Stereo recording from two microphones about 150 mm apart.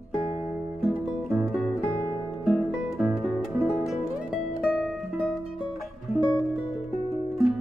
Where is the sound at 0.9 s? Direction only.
5° right (ahead or behind).